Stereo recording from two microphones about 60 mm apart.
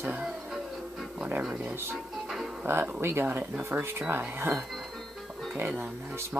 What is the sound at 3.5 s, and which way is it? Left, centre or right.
Speech, right.